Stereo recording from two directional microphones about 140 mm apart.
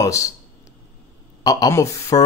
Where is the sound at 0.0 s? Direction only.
20° left (ahead or behind).